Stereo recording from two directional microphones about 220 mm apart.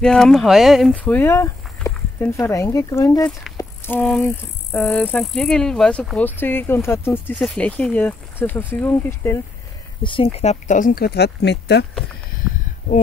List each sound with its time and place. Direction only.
0.0 s speech: centre (ahead or behind)
3.5 s a sound: 10° left (ahead or behind)
4.7 s speech: 5° left (ahead or behind)
10.0 s speech: 25° left (ahead or behind); by 11.8 s 50° left (ahead or behind)